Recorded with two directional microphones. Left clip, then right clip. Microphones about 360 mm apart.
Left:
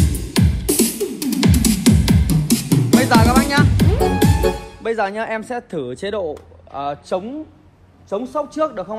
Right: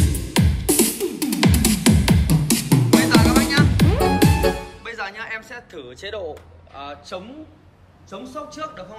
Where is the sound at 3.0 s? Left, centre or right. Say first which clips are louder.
Left 3 dB; centre.